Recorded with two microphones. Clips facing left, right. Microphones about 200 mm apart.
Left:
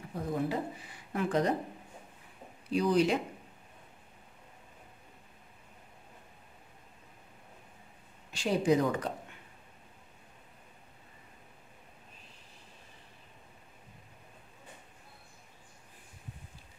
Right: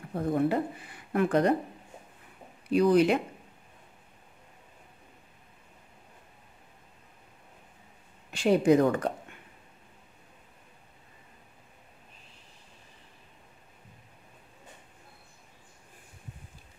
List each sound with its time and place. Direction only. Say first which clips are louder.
0.1 s speech: right 6 dB; 55° right (ahead or behind)
2.7 s speech: right 5 dB; 60° right (ahead or behind)
8.3 s speech: right 6 dB; 55° right (ahead or behind)